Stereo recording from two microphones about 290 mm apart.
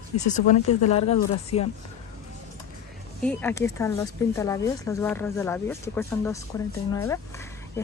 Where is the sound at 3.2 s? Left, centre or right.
Centre.